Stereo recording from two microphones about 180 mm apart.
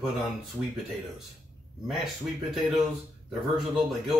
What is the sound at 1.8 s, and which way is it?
Speech, centre (ahead or behind).